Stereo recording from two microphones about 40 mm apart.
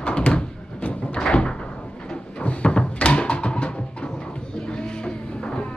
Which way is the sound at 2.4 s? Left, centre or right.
Left.